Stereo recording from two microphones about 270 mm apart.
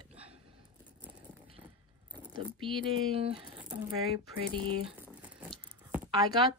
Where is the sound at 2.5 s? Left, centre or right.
Centre.